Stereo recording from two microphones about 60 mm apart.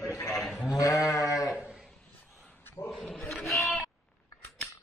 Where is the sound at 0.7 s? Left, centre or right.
Left.